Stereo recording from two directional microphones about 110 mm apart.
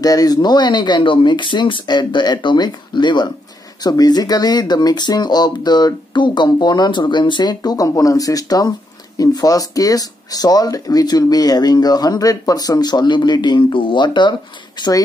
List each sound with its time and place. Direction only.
0.0 s speech: 35° left (ahead or behind)
14.8 s speech: 35° left (ahead or behind)